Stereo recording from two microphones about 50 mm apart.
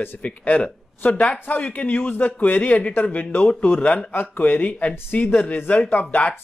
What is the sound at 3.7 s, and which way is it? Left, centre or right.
Speech, left.